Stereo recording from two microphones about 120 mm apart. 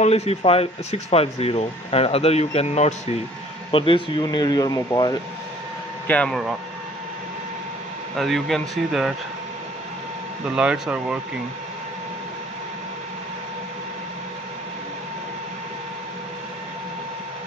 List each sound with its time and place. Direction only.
0.0 s speech: 60° left (ahead or behind)
3.7 s speech: 45° left (ahead or behind)
4.2 s speech: 35° left (ahead or behind)
6.0 s speech: 10° left (ahead or behind)
8.2 s speech: centre (ahead or behind)
10.4 s speech: 10° right (ahead or behind)